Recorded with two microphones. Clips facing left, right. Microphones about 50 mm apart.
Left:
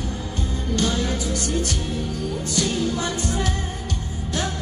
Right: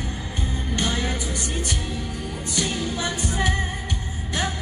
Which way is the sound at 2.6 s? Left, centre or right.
Right.